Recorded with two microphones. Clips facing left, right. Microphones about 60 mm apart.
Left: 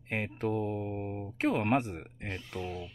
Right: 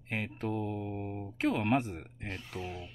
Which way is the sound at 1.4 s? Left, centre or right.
Left.